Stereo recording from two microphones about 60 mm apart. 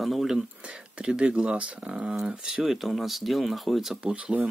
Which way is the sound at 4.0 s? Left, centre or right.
Centre.